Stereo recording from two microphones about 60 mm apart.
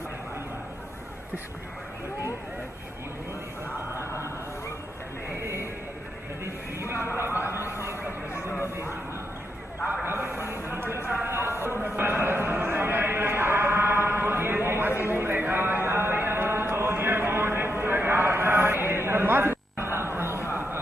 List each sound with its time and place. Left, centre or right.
7.0 s speech: right
8.3 s music: left
10.0 s a man's voice: right
12.0 s a sound: right